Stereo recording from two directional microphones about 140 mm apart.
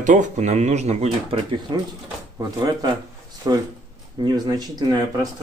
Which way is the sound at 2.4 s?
25° right (ahead or behind).